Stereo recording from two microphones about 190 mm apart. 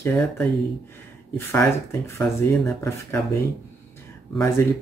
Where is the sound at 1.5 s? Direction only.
15° left (ahead or behind).